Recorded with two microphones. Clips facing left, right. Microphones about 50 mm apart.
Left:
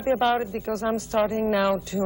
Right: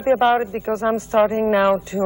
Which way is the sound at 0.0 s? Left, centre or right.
Right.